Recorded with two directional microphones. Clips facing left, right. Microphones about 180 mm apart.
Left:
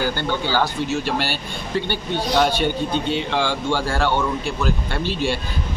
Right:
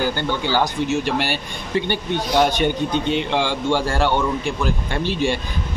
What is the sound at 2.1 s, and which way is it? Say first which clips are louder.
Speech: right 1 dB; 15° right (ahead or behind).